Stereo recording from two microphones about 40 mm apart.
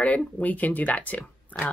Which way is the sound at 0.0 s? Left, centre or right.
Left.